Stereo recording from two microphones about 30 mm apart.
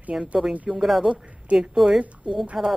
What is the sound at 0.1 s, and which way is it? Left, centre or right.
Speech, right.